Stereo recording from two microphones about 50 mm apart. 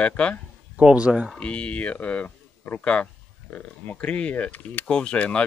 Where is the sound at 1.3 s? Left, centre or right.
Left.